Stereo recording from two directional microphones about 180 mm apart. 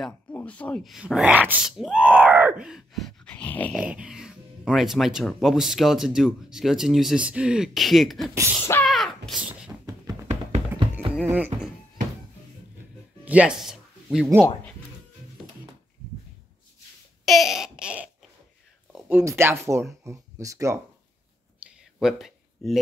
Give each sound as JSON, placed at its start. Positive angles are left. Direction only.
{"t": 0.0, "sound": "speech", "side_deg": 10}
{"t": 2.6, "sound": "dog", "side_deg": 0}
{"t": 3.7, "sound": "speech", "side_deg": -5}
{"t": 8.8, "sound": "a sound", "side_deg": 0}
{"t": 10.8, "sound": "music", "side_deg": -30}
{"t": 11.2, "sound": "music", "side_deg": -10}
{"t": 13.2, "sound": "speech", "side_deg": -10}
{"t": 17.2, "sound": "a sound", "side_deg": 0}
{"t": 18.9, "sound": "speech", "side_deg": -10}
{"t": 21.5, "sound": "a sound", "side_deg": 0}